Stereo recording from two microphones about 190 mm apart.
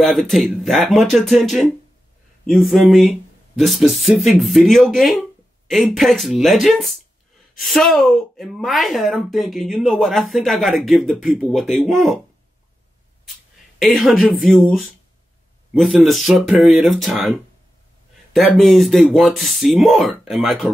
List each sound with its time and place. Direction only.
0.0 s speech: centre (ahead or behind)
13.7 s speech: centre (ahead or behind)
18.3 s speech: centre (ahead or behind)